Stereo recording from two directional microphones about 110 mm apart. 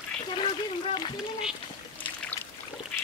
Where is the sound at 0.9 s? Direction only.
45° left (ahead or behind).